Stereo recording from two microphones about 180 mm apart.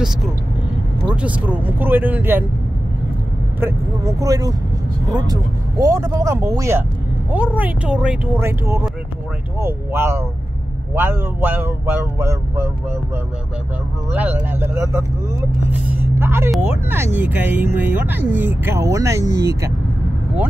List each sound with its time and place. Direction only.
1.1 s speech: 5° right (ahead or behind)
3.6 s speech: 15° right (ahead or behind)
14.1 s speech: 10° right (ahead or behind)